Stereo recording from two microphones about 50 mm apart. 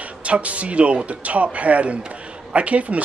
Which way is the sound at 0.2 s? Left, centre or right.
Right.